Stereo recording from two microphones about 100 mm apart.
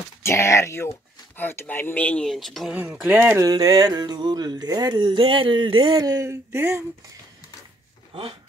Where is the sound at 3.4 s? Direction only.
40° right (ahead or behind).